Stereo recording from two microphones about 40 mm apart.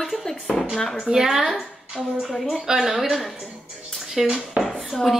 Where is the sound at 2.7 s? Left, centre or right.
Centre.